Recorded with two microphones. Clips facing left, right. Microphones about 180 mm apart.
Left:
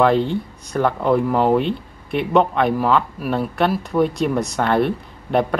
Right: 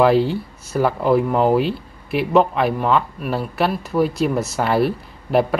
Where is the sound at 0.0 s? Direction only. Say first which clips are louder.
Right 1 dB; 5° right (ahead or behind).